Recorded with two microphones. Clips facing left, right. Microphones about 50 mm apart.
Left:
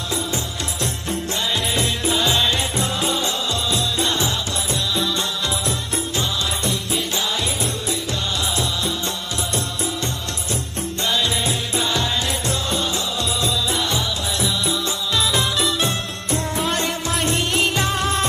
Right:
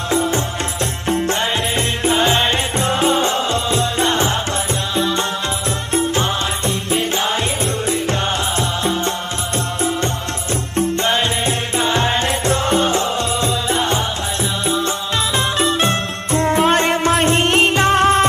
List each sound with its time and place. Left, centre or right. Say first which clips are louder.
0.1 s music: right 8 dB; right
1.8 s music: right 6 dB; right
10.8 s music: right 6 dB; right